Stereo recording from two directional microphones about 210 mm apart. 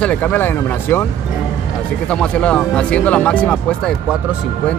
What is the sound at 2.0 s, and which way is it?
Speech, 5° left (ahead or behind).